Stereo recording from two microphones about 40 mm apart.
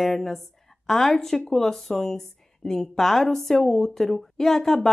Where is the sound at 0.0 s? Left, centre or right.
Centre.